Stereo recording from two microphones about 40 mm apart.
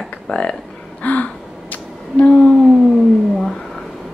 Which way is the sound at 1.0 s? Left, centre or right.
Left.